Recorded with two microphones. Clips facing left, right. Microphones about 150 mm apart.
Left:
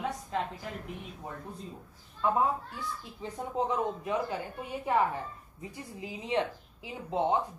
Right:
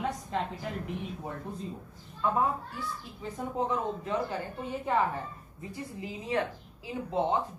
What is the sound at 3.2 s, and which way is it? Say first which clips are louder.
A woman's voice: even; 20° left (ahead or behind).